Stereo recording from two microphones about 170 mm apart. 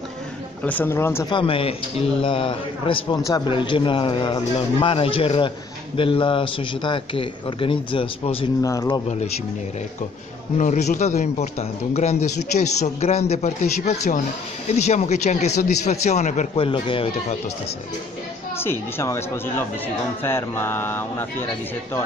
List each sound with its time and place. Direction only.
0.7 s speech: 10° left (ahead or behind)
1.3 s a man's voice: 30° left (ahead or behind)
8.6 s speech: 20° left (ahead or behind)
10.6 s a man's voice: 45° left (ahead or behind)
16.6 s a man's voice: 30° left (ahead or behind)
18.6 s speech: 15° left (ahead or behind)